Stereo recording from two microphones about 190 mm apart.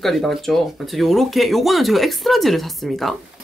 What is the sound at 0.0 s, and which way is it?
Speech, centre (ahead or behind).